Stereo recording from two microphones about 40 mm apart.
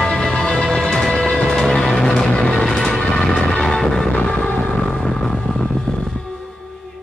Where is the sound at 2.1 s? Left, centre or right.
Left.